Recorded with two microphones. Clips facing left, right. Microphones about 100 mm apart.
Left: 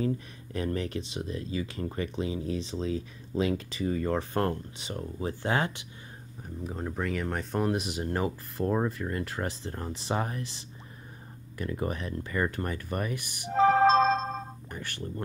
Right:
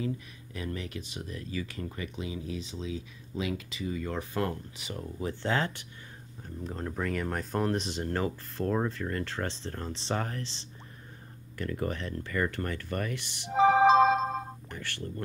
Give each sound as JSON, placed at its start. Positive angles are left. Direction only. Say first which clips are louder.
{"t": 0.0, "sound": "speech", "louder": "left 4 dB", "side_deg": 40}
{"t": 1.1, "sound": "speech", "louder": "left 4 dB", "side_deg": 25}
{"t": 5.4, "sound": "speech", "louder": "left 1 dB", "side_deg": 15}
{"t": 6.6, "sound": "speech", "louder": "left 1 dB", "side_deg": 5}
{"t": 11.5, "sound": "speech", "louder": "left 1 dB", "side_deg": 20}
{"t": 13.5, "sound": "music", "louder": "even", "side_deg": -15}
{"t": 14.7, "sound": "speech", "louder": "left 1 dB", "side_deg": 15}